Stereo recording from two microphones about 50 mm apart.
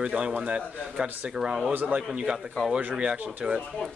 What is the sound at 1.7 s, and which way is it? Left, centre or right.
Speech, right.